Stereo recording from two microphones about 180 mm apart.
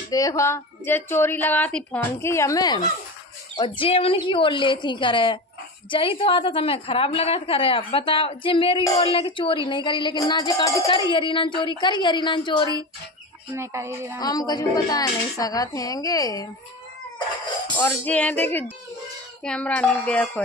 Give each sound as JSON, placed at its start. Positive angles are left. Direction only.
{"t": 0.1, "sound": "a woman's voice", "side_deg": 20}
{"t": 13.6, "sound": "speech", "side_deg": -15}
{"t": 14.2, "sound": "a woman's voice", "side_deg": 20}
{"t": 17.7, "sound": "a woman's voice", "side_deg": 10}